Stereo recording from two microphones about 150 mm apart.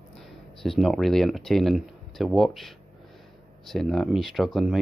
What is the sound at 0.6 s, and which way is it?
Speech, centre (ahead or behind).